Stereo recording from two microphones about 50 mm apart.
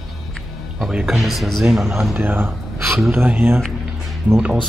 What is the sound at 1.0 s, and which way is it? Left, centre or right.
Speech, centre.